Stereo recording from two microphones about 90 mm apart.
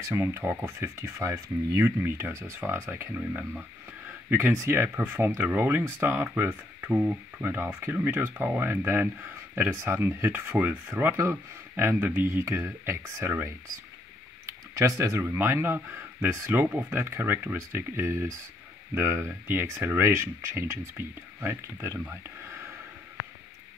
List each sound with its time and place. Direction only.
0.0 s speech: 30° right (ahead or behind)
4.3 s speech: 25° right (ahead or behind)
14.8 s speech: 35° right (ahead or behind)